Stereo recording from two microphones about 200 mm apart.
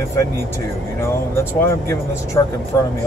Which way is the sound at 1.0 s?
10° left (ahead or behind).